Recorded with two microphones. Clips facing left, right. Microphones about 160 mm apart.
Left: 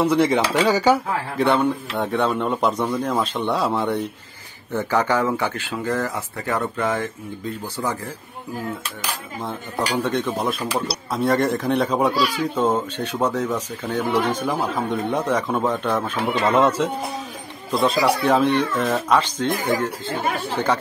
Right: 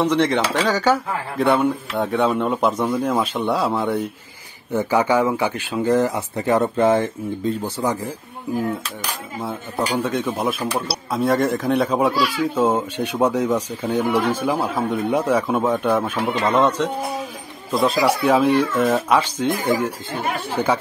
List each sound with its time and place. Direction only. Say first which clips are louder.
0.0 s speech: even; 10° left (ahead or behind)
1.4 s speech: right 1 dB; centre (ahead or behind)
4.7 s speech: right 3 dB; 10° right (ahead or behind); by 7.1 s 30° right (ahead or behind)
7.6 s speech: right 4 dB; 15° right (ahead or behind)
10.0 s speech: right 1 dB; 10° right (ahead or behind)
16.4 s speech: even; 5° left (ahead or behind)